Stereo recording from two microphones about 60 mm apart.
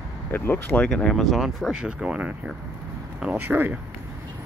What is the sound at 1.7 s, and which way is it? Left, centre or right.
Speech, centre.